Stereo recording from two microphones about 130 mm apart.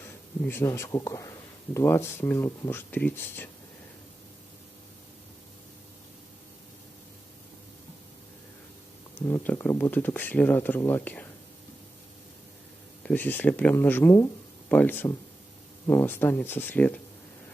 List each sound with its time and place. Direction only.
0.0 s speech: 15° left (ahead or behind)
9.4 s speech: 15° left (ahead or behind)
13.0 s speech: 10° left (ahead or behind)